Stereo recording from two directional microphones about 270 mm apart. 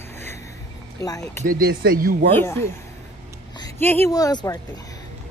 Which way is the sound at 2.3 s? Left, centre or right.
Centre.